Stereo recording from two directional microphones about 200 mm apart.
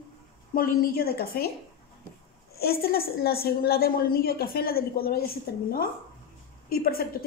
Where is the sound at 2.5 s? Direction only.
50° left (ahead or behind).